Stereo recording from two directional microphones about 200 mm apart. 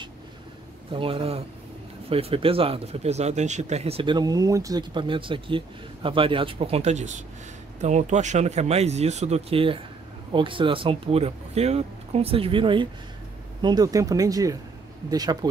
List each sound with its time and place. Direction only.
0.9 s speech: 25° right (ahead or behind)